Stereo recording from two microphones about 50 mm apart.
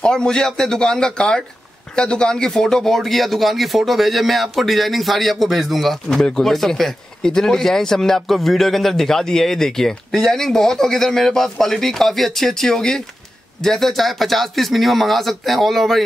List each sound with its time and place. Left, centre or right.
0.0 s speech: centre